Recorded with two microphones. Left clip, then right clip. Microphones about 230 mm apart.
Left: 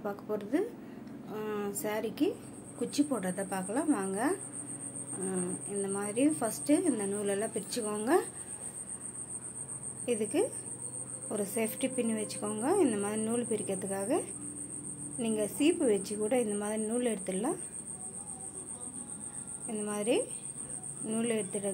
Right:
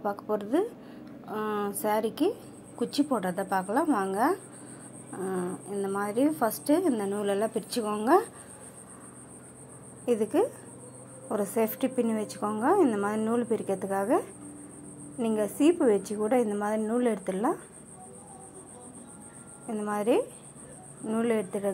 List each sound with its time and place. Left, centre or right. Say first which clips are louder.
0.0 s a woman's voice: right 6 dB; centre
10.0 s a woman's voice: right 5 dB; right
15.1 s a woman's voice: right 5 dB; centre
19.7 s a woman's voice: right 5 dB; centre